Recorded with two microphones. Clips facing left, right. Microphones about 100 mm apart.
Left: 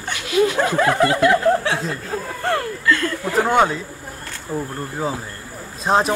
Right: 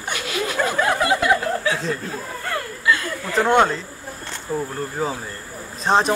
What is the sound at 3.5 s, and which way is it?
Speech, 5° left (ahead or behind).